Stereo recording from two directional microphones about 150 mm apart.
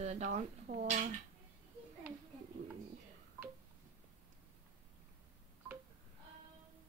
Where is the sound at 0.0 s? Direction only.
50° right (ahead or behind).